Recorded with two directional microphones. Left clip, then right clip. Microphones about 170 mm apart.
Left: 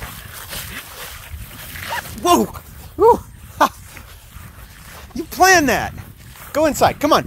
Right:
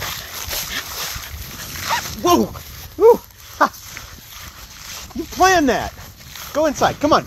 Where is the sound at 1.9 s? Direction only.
45° right (ahead or behind).